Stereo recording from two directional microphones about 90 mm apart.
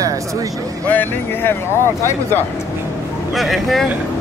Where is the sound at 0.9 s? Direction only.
20° left (ahead or behind).